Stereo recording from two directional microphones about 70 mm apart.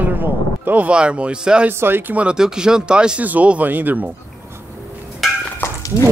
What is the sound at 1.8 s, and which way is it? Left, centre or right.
Speech, right.